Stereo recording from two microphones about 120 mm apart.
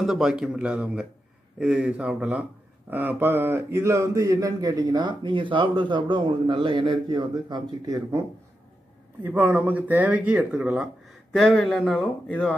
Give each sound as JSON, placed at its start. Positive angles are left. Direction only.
{"t": 0.0, "sound": "speech", "side_deg": -5}
{"t": 9.2, "sound": "speech", "side_deg": -15}
{"t": 11.3, "sound": "speech", "side_deg": 5}